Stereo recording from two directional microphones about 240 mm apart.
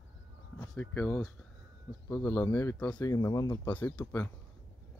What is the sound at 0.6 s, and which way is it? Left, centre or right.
Speech, centre.